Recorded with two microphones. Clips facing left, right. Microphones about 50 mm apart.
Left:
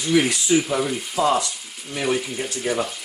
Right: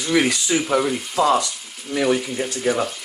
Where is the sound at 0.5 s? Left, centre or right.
Right.